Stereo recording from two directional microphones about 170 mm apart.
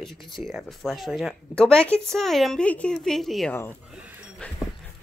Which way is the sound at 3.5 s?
15° left (ahead or behind).